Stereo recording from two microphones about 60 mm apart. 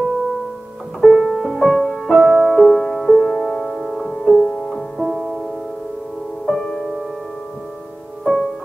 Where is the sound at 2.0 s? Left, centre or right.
Centre.